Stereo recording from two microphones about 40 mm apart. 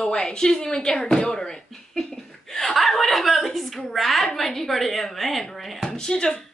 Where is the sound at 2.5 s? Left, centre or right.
Centre.